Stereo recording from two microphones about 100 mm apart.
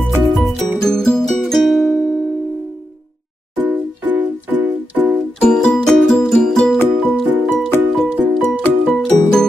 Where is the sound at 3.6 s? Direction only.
15° right (ahead or behind).